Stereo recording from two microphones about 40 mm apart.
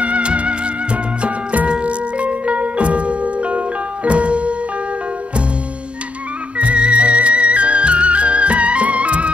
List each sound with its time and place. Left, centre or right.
0.0 s music: right
6.6 s music: right